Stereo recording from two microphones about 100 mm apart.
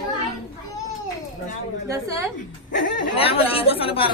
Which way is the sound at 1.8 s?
35° right (ahead or behind).